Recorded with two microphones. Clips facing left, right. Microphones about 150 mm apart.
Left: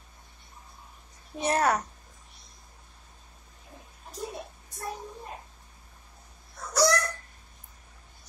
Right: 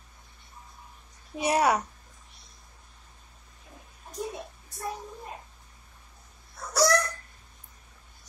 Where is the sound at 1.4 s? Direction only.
10° right (ahead or behind).